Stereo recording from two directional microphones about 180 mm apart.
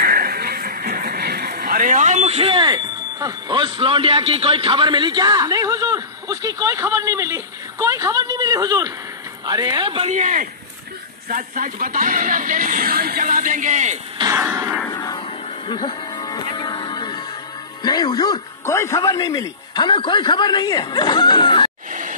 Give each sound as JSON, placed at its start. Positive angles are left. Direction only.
{"t": 0.0, "sound": "a woman's voice", "side_deg": -55}
{"t": 10.0, "sound": "speech", "side_deg": -40}
{"t": 14.1, "sound": "speech", "side_deg": -15}
{"t": 14.9, "sound": "a sound", "side_deg": 20}
{"t": 15.7, "sound": "music", "side_deg": 25}
{"t": 17.8, "sound": "speech", "side_deg": 25}